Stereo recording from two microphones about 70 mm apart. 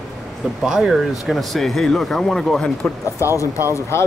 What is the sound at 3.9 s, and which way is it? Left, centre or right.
Speech, left.